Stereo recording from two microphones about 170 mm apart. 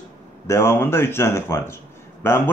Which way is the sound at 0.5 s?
15° left (ahead or behind).